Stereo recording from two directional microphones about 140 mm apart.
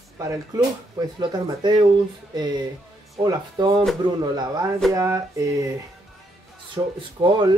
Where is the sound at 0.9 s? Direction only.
30° right (ahead or behind).